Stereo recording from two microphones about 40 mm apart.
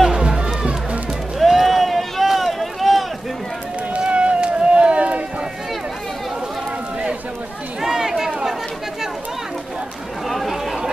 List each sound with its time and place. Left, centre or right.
0.0 s music: centre
1.4 s boat: centre
4.0 s run: right
7.8 s chatter: centre
10.2 s chatter: centre